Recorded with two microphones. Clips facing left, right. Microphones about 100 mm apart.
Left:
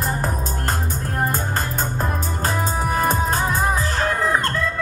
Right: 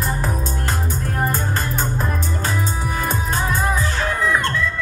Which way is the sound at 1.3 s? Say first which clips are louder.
Right 1 dB; 40° left (ahead or behind).